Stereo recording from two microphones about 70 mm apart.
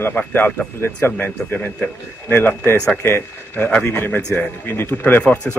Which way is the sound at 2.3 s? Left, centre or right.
Left.